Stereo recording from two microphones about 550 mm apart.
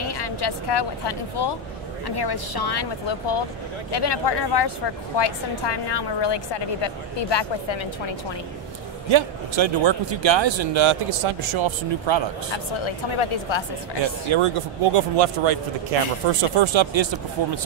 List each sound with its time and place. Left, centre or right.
0.1 s a woman's voice: left
9.1 s speech: right
12.4 s speech: left
14.3 s speech: right
15.9 s speech: right
16.5 s speech: right